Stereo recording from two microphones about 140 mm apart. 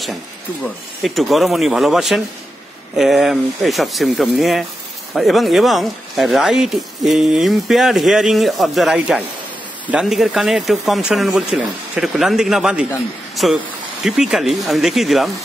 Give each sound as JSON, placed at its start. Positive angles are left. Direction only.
{"t": 1.0, "sound": "speech", "side_deg": 0}